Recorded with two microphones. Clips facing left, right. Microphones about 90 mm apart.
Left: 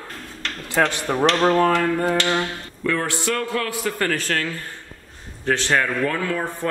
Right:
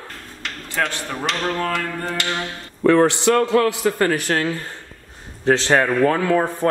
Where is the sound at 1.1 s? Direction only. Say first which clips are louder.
Left 6 dB; 30° left (ahead or behind).